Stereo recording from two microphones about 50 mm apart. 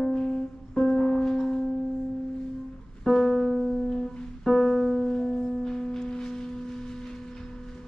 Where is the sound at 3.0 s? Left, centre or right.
Centre.